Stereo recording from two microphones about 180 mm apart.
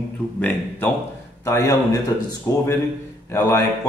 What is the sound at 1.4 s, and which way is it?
A man's voice, 15° left (ahead or behind).